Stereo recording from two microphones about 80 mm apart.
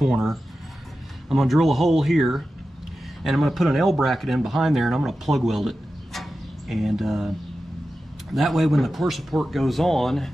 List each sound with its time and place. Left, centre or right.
0.0 s speech: centre